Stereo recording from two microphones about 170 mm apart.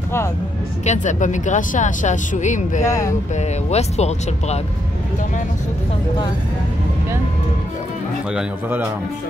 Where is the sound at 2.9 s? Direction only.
20° left (ahead or behind).